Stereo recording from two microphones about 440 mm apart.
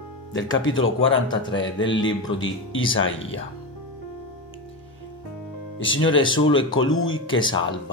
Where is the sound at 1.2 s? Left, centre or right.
Centre.